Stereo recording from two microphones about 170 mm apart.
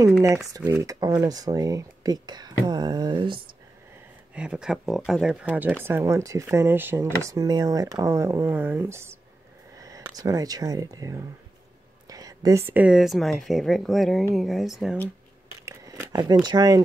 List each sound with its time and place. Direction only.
0.8 s speech: 20° right (ahead or behind)
4.4 s speech: 5° right (ahead or behind)
15.6 s biting: 20° right (ahead or behind)
16.4 s speech: 20° right (ahead or behind)